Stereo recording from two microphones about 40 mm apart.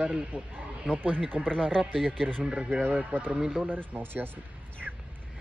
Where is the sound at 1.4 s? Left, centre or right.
Centre.